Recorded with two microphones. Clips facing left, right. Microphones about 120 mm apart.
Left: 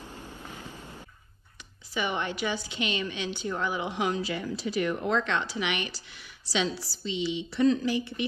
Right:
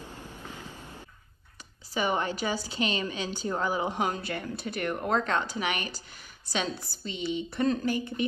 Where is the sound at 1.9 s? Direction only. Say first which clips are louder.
Right 2 dB; 40° right (ahead or behind).